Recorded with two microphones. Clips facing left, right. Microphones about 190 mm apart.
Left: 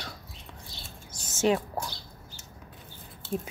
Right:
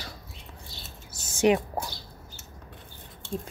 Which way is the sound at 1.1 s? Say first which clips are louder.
Right 3 dB; 10° right (ahead or behind).